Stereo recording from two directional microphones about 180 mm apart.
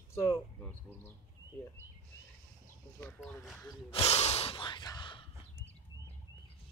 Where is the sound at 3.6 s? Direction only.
20° left (ahead or behind).